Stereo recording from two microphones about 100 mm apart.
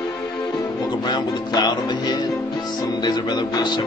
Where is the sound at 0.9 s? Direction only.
45° left (ahead or behind).